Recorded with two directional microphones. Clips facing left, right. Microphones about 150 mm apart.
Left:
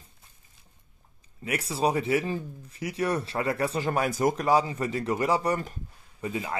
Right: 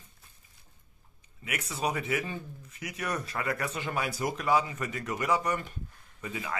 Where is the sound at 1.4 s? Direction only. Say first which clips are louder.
Left 6 dB; 35° left (ahead or behind).